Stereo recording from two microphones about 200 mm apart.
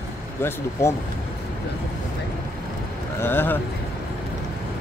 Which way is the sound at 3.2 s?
10° left (ahead or behind).